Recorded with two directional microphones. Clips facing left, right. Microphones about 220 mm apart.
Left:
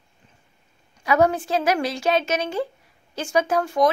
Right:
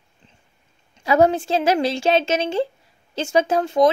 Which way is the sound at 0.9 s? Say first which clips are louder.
Right 3 dB; 25° right (ahead or behind).